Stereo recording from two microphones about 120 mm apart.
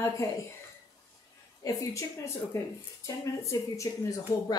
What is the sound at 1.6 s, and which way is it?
A woman's voice, 25° left (ahead or behind).